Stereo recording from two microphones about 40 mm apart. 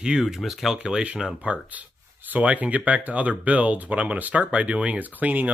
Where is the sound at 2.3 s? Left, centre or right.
Right.